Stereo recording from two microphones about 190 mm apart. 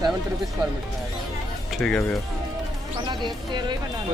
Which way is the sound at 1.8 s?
5° left (ahead or behind).